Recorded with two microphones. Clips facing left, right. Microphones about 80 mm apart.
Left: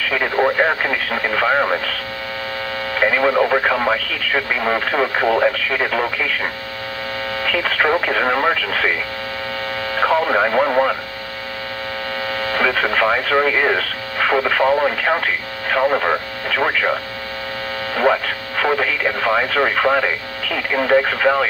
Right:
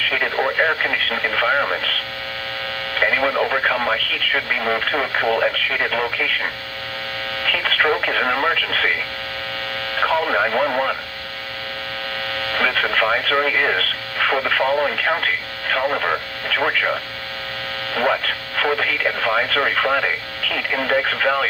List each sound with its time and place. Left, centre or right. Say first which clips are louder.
0.1 s speech: left 5 dB; left
3.0 s speech: left 3 dB; centre
7.4 s speech: left 1 dB; left
9.9 s speech: left 2 dB; left
12.4 s speech: left 2 dB; left
17.9 s speech: left 3 dB; left